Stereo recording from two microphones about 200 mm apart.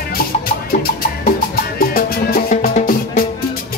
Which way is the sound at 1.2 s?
45° left (ahead or behind).